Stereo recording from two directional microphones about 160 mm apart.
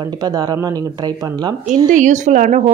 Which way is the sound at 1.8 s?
50° right (ahead or behind).